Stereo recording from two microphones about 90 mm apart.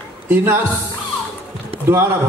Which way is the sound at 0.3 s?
25° right (ahead or behind).